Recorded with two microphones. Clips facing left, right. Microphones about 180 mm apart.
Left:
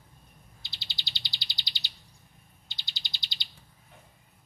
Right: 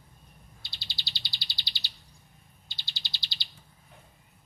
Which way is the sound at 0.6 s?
20° left (ahead or behind).